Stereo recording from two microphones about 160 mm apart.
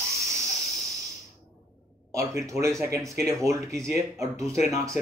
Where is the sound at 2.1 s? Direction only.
20° right (ahead or behind).